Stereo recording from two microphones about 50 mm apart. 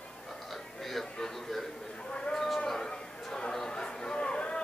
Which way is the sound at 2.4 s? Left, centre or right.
Centre.